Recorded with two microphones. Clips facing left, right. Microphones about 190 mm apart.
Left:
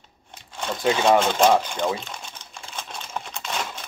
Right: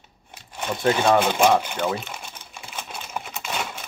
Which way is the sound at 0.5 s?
10° right (ahead or behind).